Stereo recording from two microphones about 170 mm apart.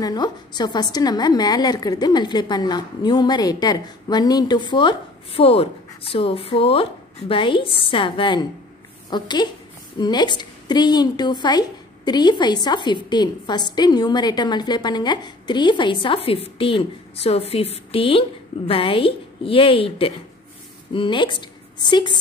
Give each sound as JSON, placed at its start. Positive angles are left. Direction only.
{"t": 0.0, "sound": "a woman's voice", "side_deg": 25}